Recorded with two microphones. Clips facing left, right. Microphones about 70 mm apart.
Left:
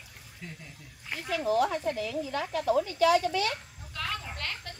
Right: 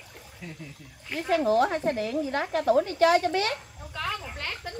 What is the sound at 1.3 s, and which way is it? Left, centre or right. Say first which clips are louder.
Speech: right 4 dB; right.